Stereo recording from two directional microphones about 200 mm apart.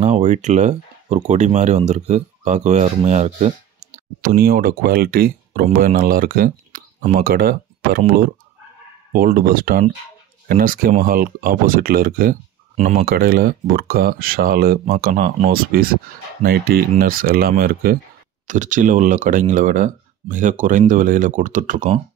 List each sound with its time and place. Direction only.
0.0 s speech: 35° right (ahead or behind)
4.4 s speech: 50° right (ahead or behind)
9.1 s speech: 45° right (ahead or behind)
12.7 s speech: 35° right (ahead or behind)
13.0 s speech: 50° right (ahead or behind)